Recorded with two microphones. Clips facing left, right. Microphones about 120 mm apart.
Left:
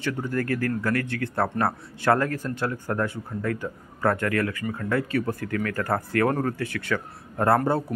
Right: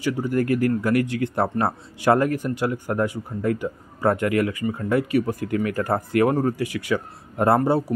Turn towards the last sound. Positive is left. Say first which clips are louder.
# right 3 dB
turn(degrees=-15)  # may be behind; listen again after turning